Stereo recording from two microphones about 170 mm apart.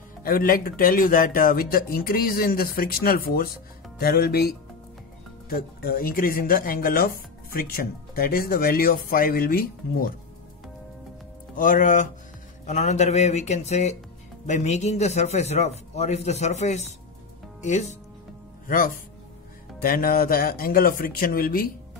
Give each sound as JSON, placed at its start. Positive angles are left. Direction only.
{"t": 0.2, "sound": "speech", "side_deg": 60}
{"t": 5.5, "sound": "speech", "side_deg": 60}
{"t": 11.5, "sound": "a man's voice", "side_deg": 50}
{"t": 19.8, "sound": "speech", "side_deg": 55}